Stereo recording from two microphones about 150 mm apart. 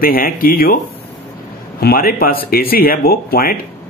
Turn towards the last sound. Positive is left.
turn(degrees=85)